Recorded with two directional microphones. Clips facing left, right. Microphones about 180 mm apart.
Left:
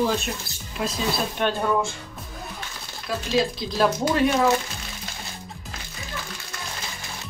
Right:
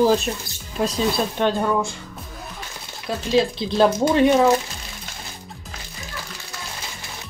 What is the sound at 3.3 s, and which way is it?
Speech, 25° right (ahead or behind).